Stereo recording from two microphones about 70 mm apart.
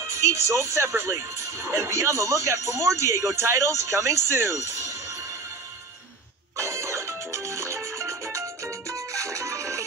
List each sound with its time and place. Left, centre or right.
0.2 s speech: right
6.6 s music: right